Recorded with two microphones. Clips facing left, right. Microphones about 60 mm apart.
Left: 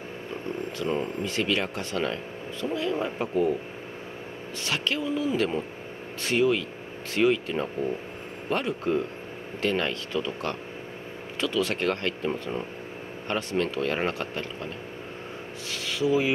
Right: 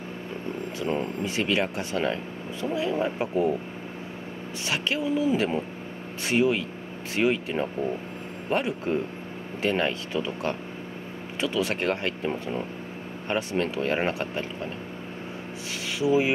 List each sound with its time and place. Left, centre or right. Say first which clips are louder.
0.7 s speech: right 1 dB; centre
4.6 s speech: right 1 dB; centre
16.0 s speech: right 1 dB; centre